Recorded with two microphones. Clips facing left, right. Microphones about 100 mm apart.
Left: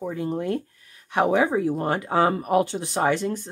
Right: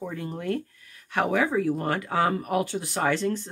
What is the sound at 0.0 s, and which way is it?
Speech, 10° left (ahead or behind).